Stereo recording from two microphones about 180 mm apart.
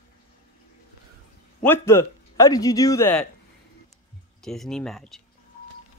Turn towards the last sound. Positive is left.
turn(degrees=0)  # may be behind; listen again after turning